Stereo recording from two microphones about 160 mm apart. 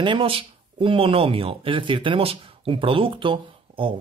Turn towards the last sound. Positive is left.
turn(degrees=-30)  # may be behind; listen again after turning